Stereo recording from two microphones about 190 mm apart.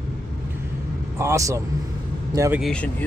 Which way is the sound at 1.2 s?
15° right (ahead or behind).